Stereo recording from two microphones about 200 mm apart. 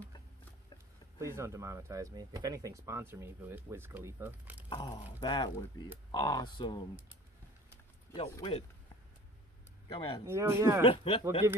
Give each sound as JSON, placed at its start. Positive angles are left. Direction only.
{"t": 1.2, "sound": "speech", "side_deg": -15}
{"t": 4.6, "sound": "speech", "side_deg": 20}
{"t": 8.1, "sound": "speech", "side_deg": 25}
{"t": 9.9, "sound": "speech", "side_deg": 25}
{"t": 10.2, "sound": "speech", "side_deg": -15}
{"t": 10.8, "sound": "speech", "side_deg": 25}